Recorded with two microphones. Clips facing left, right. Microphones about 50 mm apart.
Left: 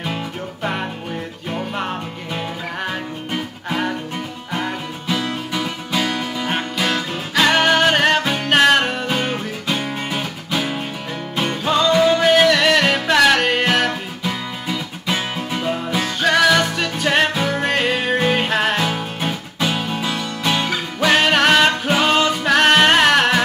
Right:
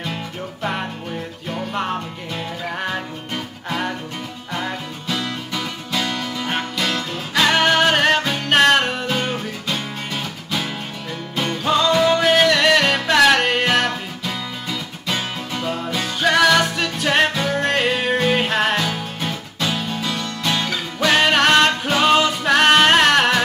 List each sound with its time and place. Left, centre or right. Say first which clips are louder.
1.5 s music: right 1 dB; centre
11.6 s music: left 1 dB; centre
16.2 s music: even; centre
18.9 s music: left 2 dB; centre
21.1 s music: even; centre